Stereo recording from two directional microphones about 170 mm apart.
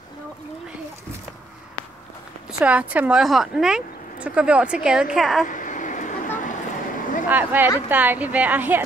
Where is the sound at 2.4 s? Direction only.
10° right (ahead or behind).